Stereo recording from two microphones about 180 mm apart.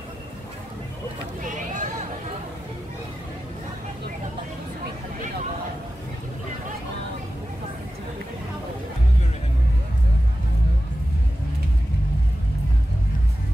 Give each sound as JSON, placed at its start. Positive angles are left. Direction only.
{"t": 1.4, "sound": "vehicle", "side_deg": -45}